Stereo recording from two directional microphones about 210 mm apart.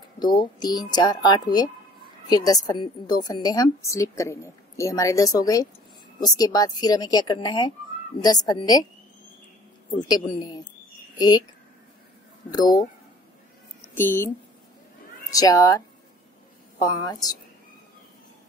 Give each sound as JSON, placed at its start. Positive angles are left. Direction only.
{"t": 0.2, "sound": "a woman's voice", "side_deg": 20}
{"t": 9.9, "sound": "speech", "side_deg": 20}
{"t": 12.4, "sound": "speech", "side_deg": 20}
{"t": 13.9, "sound": "a woman's voice", "side_deg": 10}
{"t": 15.3, "sound": "a woman's voice", "side_deg": 15}
{"t": 16.8, "sound": "a woman's voice", "side_deg": 20}